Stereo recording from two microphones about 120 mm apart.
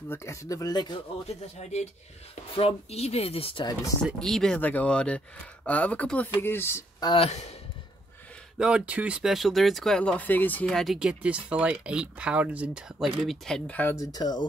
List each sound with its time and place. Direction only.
0.1 s speech: 25° left (ahead or behind)
0.9 s speech: 60° left (ahead or behind)
4.2 s speech: 5° left (ahead or behind); by 6.8 s 20° left (ahead or behind)
7.2 s speech: 65° left (ahead or behind)
8.5 s speech: 5° right (ahead or behind); by 10.7 s 15° left (ahead or behind)
10.7 s speech: centre (ahead or behind)
11.0 s speech: 10° right (ahead or behind)
13.7 s speech: 15° left (ahead or behind)
13.9 s speech: 30° left (ahead or behind)